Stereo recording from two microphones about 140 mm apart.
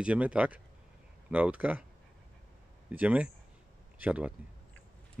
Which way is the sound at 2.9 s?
10° right (ahead or behind).